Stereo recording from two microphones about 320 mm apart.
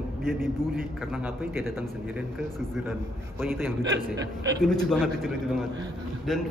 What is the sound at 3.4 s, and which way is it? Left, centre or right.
A man's voice, centre.